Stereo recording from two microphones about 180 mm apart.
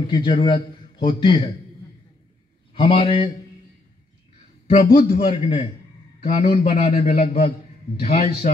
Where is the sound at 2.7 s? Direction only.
30° left (ahead or behind).